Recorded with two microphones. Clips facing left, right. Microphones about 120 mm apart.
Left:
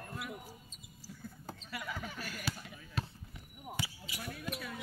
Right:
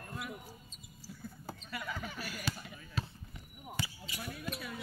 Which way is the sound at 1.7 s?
5° left (ahead or behind).